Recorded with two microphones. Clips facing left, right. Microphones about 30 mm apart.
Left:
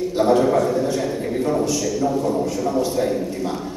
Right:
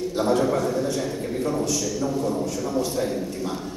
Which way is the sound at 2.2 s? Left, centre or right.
Centre.